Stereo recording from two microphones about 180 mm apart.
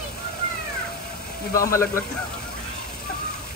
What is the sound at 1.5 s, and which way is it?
Speech, 15° left (ahead or behind).